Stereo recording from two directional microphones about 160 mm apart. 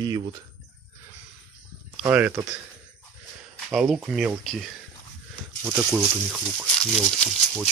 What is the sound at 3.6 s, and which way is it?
Speech, 5° right (ahead or behind).